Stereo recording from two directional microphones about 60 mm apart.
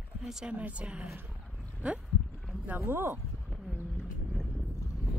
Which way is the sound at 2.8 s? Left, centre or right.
Right.